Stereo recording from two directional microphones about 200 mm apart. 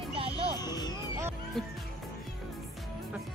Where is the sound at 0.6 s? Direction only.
20° left (ahead or behind).